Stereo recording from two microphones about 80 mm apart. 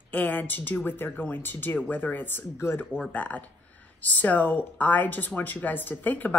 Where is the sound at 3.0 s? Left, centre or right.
Centre.